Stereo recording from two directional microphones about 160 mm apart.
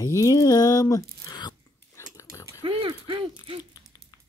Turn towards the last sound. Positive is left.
turn(degrees=-35)  # may be behind; listen again after turning